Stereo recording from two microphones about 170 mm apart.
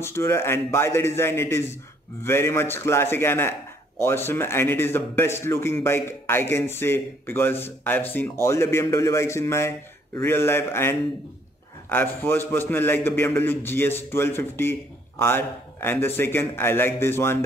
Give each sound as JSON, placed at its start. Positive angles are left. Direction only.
{"t": 0.0, "sound": "a man's voice", "side_deg": 15}